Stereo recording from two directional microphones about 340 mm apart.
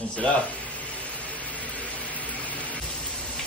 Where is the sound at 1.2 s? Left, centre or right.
Centre.